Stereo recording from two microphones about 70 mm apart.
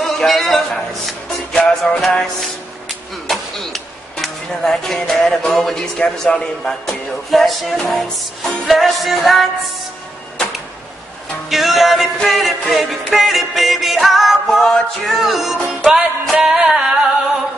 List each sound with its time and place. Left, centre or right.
0.0 s music: centre
3.3 s speech: centre
8.5 s music: centre
10.3 s tick-tock: centre
11.5 s music: centre